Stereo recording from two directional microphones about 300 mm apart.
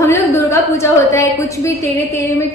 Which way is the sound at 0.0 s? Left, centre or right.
Centre.